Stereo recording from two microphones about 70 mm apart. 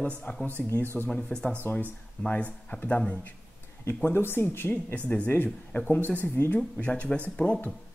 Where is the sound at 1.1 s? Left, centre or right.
Centre.